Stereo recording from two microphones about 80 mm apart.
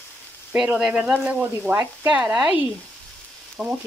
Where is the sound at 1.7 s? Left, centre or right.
Right.